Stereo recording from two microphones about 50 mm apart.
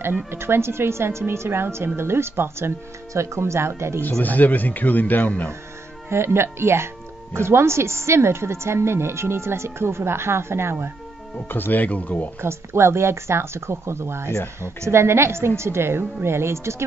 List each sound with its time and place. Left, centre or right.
0.3 s a woman's voice: right
3.1 s a woman's voice: right
4.2 s a man's voice: left
6.0 s a woman's voice: right
11.4 s a man's voice: left
12.4 s a woman's voice: right